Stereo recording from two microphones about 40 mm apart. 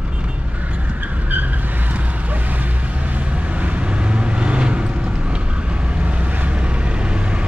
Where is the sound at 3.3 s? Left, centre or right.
Right.